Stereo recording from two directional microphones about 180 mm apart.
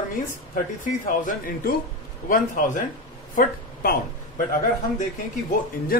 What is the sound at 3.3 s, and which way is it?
Speech, 55° left (ahead or behind).